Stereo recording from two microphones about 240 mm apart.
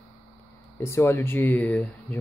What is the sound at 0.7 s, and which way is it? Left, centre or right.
Speech, centre.